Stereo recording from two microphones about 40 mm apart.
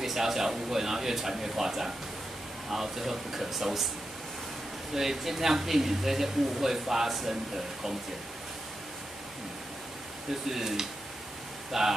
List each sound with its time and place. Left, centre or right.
0.0 s speech: centre
4.9 s speech: centre
10.5 s speech: centre